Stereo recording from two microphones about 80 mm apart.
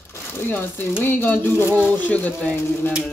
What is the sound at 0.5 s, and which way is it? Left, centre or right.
Speech, left.